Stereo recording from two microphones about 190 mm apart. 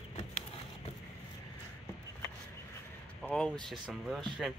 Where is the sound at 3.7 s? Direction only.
Centre (ahead or behind).